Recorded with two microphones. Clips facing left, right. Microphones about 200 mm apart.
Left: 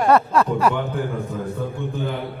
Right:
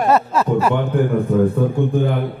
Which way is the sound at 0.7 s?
55° right (ahead or behind).